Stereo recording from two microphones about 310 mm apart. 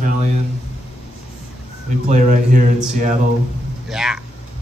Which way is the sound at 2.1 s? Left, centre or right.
Right.